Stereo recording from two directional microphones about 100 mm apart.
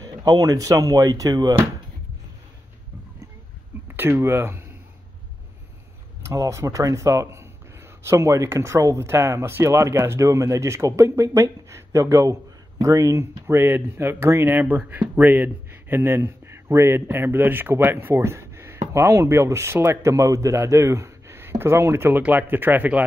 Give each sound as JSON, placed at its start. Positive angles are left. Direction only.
{"t": 0.0, "sound": "speech", "side_deg": -40}
{"t": 3.9, "sound": "speech", "side_deg": -20}
{"t": 6.2, "sound": "speech", "side_deg": -30}